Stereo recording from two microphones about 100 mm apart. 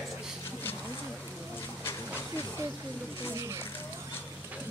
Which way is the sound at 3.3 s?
30° right (ahead or behind).